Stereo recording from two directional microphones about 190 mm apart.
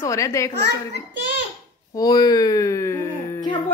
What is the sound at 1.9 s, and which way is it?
Speech, 20° left (ahead or behind).